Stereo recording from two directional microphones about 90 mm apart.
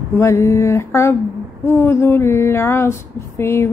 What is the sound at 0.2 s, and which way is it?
Female singing, 35° left (ahead or behind).